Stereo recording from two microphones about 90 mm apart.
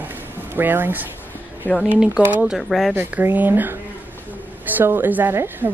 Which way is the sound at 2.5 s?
Centre (ahead or behind).